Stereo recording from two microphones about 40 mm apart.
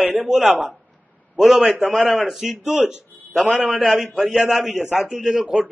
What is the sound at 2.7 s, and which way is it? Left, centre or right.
Speech, right.